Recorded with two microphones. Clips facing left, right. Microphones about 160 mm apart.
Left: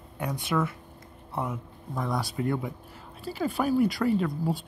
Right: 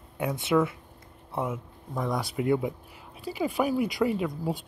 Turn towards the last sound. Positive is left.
turn(degrees=-15)  # may be behind; listen again after turning